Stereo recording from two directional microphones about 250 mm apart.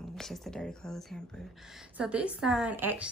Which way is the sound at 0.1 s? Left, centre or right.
Centre.